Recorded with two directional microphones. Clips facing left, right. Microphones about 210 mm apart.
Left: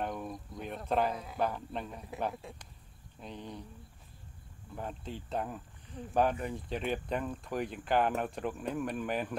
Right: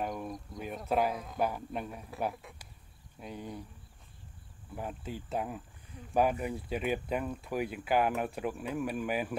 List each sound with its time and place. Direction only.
0.0 s a sound: 5° right (ahead or behind)
1.4 s speech: 10° right (ahead or behind)
2.4 s speech: 30° left (ahead or behind)
3.2 s speech: 10° right (ahead or behind)
4.7 s speech: 5° right (ahead or behind)